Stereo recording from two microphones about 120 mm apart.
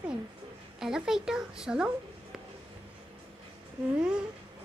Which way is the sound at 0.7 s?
5° right (ahead or behind).